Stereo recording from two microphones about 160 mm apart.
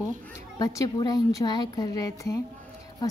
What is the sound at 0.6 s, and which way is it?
A woman's voice, 25° left (ahead or behind).